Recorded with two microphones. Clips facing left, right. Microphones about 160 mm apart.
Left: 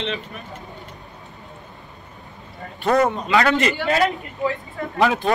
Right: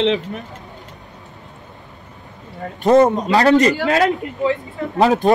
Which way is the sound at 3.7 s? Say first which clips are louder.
Right 4 dB; 90° right.